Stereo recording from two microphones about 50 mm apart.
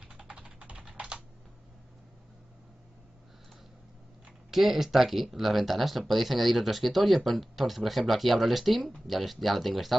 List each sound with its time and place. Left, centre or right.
0.0 s typing: centre
4.5 s speech: centre